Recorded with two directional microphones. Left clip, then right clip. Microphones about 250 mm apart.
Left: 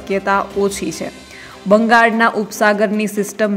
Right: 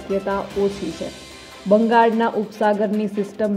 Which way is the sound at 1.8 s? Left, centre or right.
Centre.